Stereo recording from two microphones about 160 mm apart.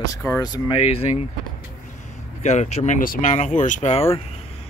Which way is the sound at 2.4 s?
45° left (ahead or behind).